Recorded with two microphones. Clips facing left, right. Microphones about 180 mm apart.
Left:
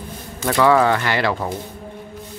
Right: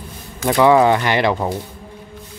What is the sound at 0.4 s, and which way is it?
Speech, 15° right (ahead or behind).